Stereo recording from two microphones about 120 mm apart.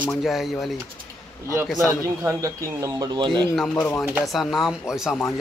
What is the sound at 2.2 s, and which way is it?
Speech, 25° right (ahead or behind).